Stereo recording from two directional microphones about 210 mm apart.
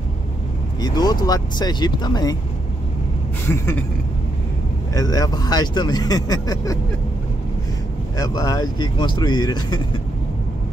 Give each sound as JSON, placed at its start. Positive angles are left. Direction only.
{"t": 0.7, "sound": "speech", "side_deg": 20}
{"t": 3.4, "sound": "speech", "side_deg": 10}
{"t": 4.9, "sound": "speech", "side_deg": 15}
{"t": 8.2, "sound": "speech", "side_deg": 20}